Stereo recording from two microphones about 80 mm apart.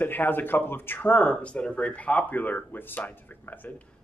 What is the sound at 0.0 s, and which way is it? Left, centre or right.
Speech, left.